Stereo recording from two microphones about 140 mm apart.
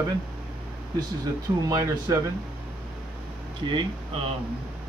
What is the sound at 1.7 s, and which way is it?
Speech, 25° right (ahead or behind).